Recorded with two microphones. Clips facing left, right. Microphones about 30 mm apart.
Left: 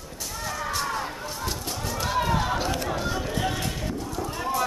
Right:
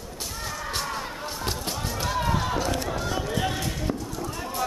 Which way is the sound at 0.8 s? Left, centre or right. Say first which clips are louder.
Left 3 dB; centre.